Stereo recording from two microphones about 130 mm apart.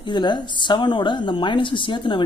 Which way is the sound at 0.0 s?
35° left (ahead or behind).